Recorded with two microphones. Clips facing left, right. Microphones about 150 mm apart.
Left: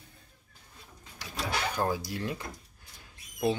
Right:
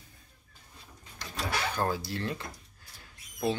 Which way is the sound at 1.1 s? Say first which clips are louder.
Even; 10° left (ahead or behind).